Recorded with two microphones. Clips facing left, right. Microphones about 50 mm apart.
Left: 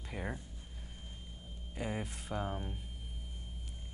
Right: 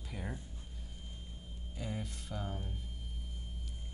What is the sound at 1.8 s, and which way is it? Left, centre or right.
Speech, left.